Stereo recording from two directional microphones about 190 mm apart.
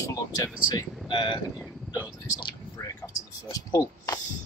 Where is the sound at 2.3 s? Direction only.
20° left (ahead or behind).